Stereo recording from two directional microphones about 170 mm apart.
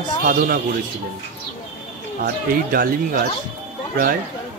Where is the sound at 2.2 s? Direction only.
60° right (ahead or behind).